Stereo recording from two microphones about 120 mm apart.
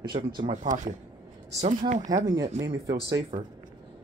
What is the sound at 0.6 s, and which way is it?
Speech, 90° right.